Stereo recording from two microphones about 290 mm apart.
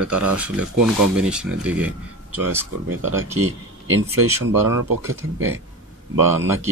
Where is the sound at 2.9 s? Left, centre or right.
Right.